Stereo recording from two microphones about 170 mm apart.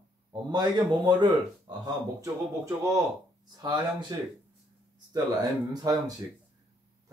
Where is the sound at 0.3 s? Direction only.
25° right (ahead or behind).